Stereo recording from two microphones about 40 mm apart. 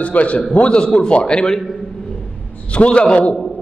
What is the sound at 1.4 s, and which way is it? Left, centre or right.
Speech, centre.